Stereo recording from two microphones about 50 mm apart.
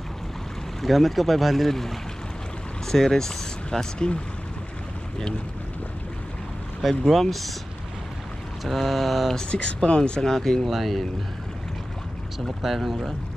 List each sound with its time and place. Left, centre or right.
0.8 s speech: centre
6.8 s speech: centre
8.6 s speech: centre
9.5 s speech: centre
12.4 s speech: centre